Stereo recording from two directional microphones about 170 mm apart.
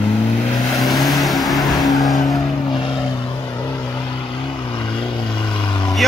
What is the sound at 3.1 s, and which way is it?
Vehicle, 25° left (ahead or behind).